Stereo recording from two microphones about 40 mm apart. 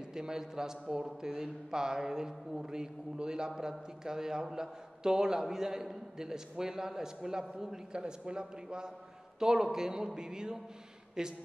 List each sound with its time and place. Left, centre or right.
0.1 s a man's voice: centre